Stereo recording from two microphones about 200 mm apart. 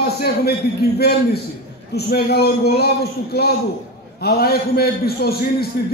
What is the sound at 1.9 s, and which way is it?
A man's voice, 55° left (ahead or behind).